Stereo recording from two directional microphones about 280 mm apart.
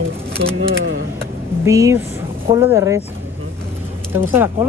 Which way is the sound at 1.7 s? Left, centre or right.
Centre.